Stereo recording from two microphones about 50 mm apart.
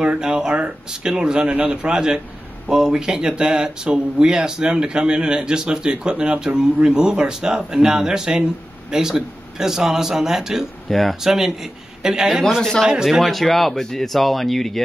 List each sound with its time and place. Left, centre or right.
0.0 s speech: centre
10.9 s speech: centre